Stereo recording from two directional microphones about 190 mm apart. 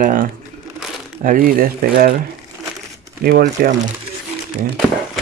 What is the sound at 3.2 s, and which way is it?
Speech, 55° right (ahead or behind).